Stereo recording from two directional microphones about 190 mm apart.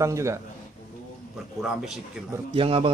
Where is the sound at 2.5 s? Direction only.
30° right (ahead or behind).